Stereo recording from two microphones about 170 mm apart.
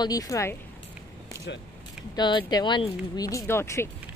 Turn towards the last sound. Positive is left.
turn(degrees=15)  # may be behind; listen again after turning